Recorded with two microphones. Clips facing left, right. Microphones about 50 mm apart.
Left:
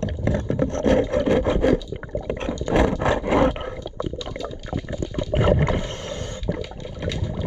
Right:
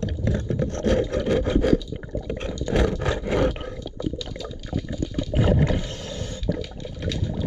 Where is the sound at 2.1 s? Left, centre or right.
Left.